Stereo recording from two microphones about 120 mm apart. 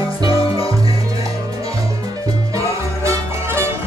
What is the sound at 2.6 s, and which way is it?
Music, 20° right (ahead or behind).